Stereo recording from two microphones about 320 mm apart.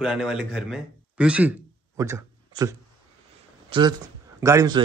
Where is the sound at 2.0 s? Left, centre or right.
Centre.